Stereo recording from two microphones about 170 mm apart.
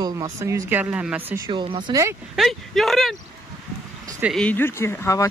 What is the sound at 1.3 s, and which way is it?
Speech, 25° right (ahead or behind).